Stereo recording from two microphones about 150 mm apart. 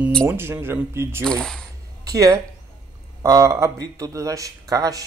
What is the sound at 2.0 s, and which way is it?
Speech, 20° right (ahead or behind).